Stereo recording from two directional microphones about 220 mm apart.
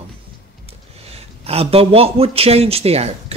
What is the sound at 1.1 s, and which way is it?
Speech, 25° right (ahead or behind).